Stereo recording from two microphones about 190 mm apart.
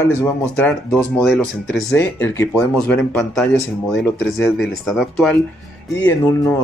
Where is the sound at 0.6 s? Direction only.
5° left (ahead or behind).